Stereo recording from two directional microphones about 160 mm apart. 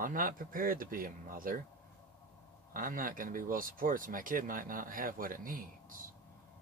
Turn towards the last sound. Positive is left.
turn(degrees=-60)  # may be behind; listen again after turning